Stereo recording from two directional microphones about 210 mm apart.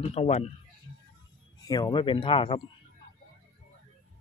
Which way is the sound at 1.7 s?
20° left (ahead or behind).